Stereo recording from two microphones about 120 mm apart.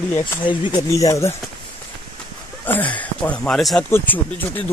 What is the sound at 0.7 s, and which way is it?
Speech, 25° left (ahead or behind).